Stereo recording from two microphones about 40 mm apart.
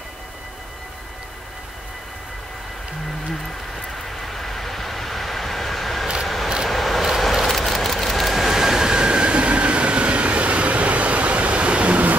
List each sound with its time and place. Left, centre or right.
4.3 s vehicle: centre; by 12.2 s right